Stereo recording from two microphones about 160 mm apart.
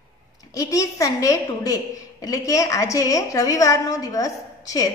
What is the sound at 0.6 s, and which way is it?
A woman's voice, 20° left (ahead or behind).